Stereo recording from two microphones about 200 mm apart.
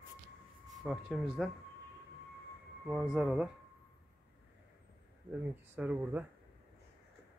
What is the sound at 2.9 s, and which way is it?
Speech, 5° right (ahead or behind).